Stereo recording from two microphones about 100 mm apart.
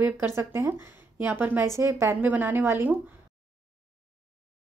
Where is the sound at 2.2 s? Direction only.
15° right (ahead or behind).